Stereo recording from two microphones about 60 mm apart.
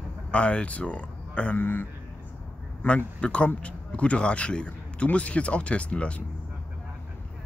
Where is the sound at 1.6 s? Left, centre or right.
Left.